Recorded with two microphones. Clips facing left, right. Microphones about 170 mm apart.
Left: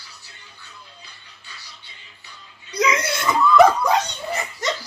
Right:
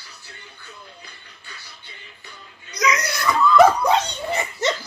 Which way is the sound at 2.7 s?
30° left (ahead or behind).